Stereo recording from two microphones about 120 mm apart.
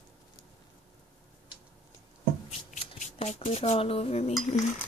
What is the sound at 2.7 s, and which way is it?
Dishes, 65° left (ahead or behind).